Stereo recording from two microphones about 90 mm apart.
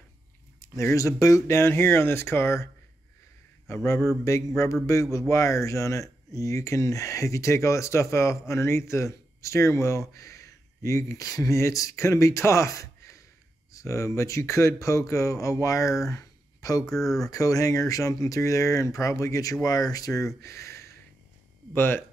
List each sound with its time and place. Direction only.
0.6 s speech: 30° left (ahead or behind)
16.8 s speech: 5° left (ahead or behind)
17.3 s speech: 40° left (ahead or behind); by 22.0 s 25° left (ahead or behind)